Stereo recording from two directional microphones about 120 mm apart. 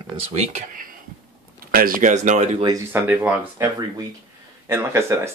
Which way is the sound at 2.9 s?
15° right (ahead or behind).